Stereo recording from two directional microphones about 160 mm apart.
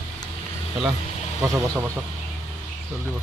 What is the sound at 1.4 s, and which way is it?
Speech, 15° right (ahead or behind).